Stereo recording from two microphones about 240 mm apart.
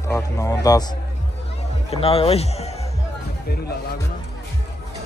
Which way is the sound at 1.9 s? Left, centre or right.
Left.